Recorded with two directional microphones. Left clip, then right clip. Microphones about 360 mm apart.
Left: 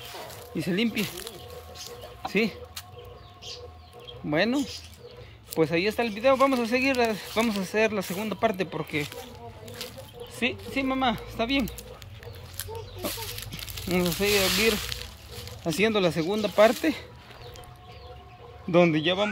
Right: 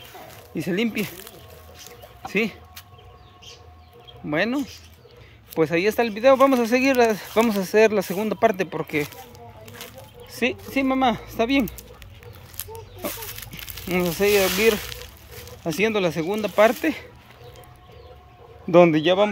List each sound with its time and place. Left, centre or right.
0.6 s speech: centre
1.9 s music: centre
4.3 s speech: centre
10.3 s speech: centre
12.5 s a sound: centre
14.0 s speech: centre
18.7 s speech: centre